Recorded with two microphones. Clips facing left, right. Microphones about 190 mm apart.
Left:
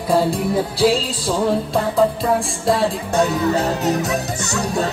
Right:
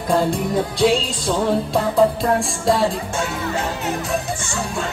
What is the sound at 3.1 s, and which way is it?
Speech, 35° left (ahead or behind).